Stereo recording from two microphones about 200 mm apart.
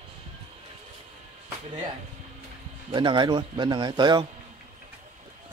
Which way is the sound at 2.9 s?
25° right (ahead or behind).